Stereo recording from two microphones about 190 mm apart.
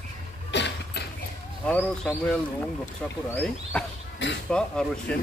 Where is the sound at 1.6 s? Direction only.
5° left (ahead or behind).